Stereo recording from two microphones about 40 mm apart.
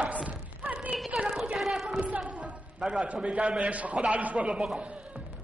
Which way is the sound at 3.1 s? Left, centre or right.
Right.